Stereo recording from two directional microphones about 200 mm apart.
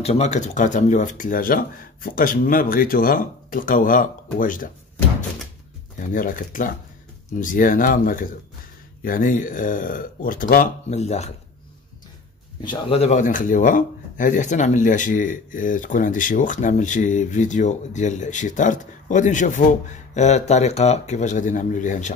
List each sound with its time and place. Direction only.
0.0 s speech: 35° left (ahead or behind)
5.9 s speech: 40° left (ahead or behind)
12.6 s speech: 30° left (ahead or behind)